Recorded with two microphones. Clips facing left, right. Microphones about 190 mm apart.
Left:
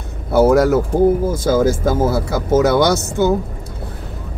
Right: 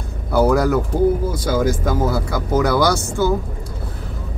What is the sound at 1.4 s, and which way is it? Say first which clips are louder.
Speech: left 4 dB; 45° left (ahead or behind).